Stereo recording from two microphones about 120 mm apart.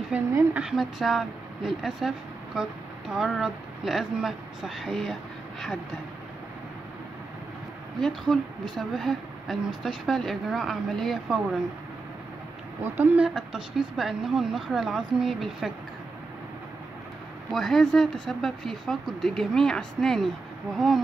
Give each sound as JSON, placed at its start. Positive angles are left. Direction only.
{"t": 0.3, "sound": "a woman's voice", "side_deg": -20}
{"t": 0.6, "sound": "speech", "side_deg": -5}
{"t": 8.0, "sound": "a woman's voice", "side_deg": 5}
{"t": 12.8, "sound": "a woman's voice", "side_deg": -15}
{"t": 13.3, "sound": "speech", "side_deg": 0}
{"t": 17.5, "sound": "speech", "side_deg": 5}